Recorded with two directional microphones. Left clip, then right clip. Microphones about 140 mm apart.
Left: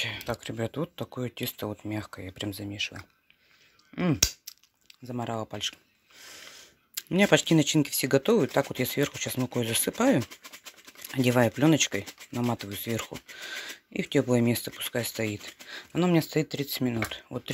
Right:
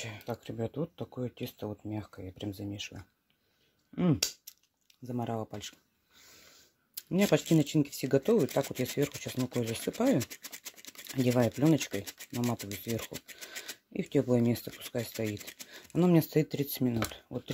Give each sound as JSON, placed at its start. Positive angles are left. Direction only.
{"t": 0.0, "sound": "speech", "side_deg": -5}
{"t": 2.7, "sound": "speech", "side_deg": -20}
{"t": 3.9, "sound": "a sound", "side_deg": -25}
{"t": 5.1, "sound": "speech", "side_deg": -15}
{"t": 7.0, "sound": "speech", "side_deg": -5}
{"t": 11.2, "sound": "speech", "side_deg": -5}
{"t": 16.0, "sound": "speech", "side_deg": -30}